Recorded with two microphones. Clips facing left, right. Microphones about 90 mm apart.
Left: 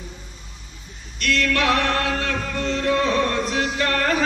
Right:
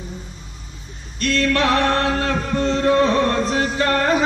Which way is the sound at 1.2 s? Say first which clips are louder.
Right 3 dB; 30° right (ahead or behind).